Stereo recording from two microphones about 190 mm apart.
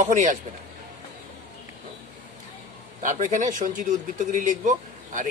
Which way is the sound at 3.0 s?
45° right (ahead or behind).